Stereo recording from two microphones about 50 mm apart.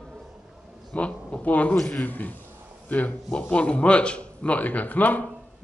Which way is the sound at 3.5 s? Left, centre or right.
Left.